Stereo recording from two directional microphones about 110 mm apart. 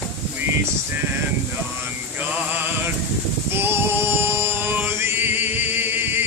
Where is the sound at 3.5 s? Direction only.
20° right (ahead or behind).